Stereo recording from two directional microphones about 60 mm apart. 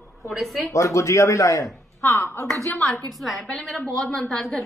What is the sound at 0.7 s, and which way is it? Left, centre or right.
A man's voice, left.